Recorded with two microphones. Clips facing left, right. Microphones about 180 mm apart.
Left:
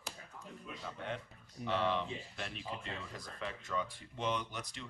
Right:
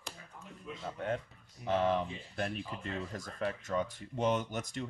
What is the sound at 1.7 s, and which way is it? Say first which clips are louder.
Speech: right 4 dB; 40° right (ahead or behind).